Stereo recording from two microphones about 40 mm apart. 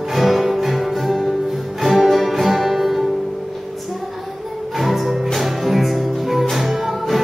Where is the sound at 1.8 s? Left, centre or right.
Centre.